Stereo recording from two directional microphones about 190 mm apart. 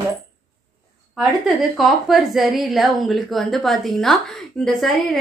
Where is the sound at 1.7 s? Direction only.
Centre (ahead or behind).